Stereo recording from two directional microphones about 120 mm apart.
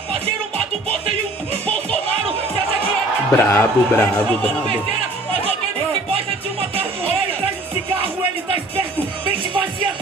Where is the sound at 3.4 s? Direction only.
20° left (ahead or behind).